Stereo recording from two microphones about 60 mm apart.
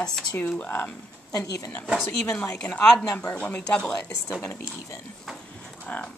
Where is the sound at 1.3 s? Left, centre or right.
Left.